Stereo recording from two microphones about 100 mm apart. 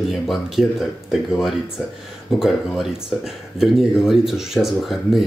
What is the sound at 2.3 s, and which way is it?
Speech, 5° right (ahead or behind).